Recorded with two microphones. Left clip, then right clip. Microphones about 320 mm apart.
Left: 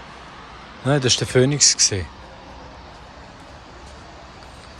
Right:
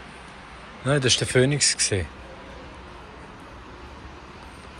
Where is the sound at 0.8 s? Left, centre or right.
Centre.